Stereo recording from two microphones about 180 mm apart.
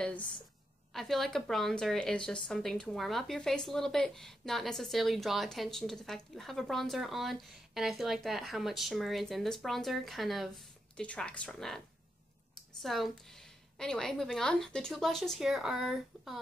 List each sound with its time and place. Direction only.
0.9 s a woman's voice: centre (ahead or behind)
12.8 s a woman's voice: centre (ahead or behind)